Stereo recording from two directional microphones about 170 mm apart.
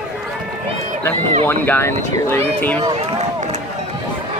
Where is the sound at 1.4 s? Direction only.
10° left (ahead or behind).